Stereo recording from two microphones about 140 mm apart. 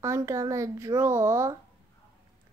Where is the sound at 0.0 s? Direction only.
20° right (ahead or behind).